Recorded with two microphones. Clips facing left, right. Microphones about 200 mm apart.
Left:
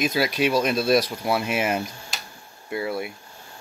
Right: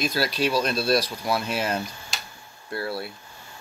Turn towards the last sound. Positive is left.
turn(degrees=15)  # may be behind; listen again after turning